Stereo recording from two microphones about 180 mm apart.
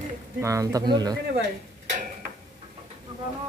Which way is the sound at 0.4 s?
15° right (ahead or behind).